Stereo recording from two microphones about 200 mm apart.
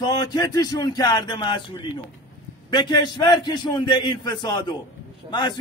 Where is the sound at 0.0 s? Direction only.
20° left (ahead or behind).